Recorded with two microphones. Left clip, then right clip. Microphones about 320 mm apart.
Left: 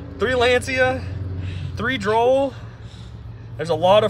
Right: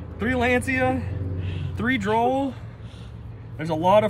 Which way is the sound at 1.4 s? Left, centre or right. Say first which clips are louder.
Even; centre.